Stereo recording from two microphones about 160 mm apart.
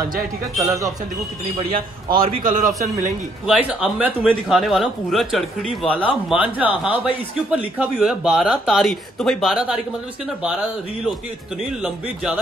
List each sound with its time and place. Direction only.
0.6 s speech: 20° right (ahead or behind)
2.4 s a man's voice: 55° right (ahead or behind)
3.4 s speech: 5° right (ahead or behind)